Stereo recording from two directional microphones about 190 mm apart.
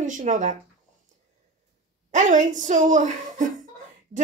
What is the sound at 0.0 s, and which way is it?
Speech, 40° right (ahead or behind).